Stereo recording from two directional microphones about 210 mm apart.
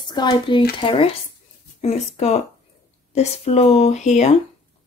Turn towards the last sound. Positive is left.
turn(degrees=35)  # may be behind; listen again after turning